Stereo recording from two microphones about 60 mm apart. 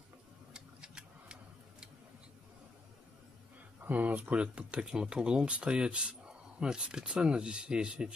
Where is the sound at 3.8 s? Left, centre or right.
Right.